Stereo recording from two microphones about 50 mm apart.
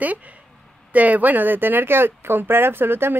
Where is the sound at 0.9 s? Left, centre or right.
Right.